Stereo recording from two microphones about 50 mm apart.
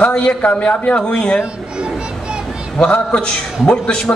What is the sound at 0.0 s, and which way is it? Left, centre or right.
A man's voice, left.